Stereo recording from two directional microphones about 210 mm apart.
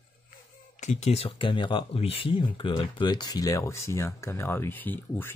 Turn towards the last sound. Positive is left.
turn(degrees=10)  # may be behind; listen again after turning